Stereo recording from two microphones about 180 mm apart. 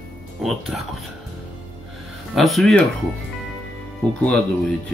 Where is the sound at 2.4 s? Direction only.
Centre (ahead or behind).